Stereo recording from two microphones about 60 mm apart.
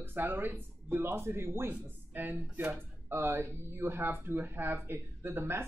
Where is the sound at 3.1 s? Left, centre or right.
Right.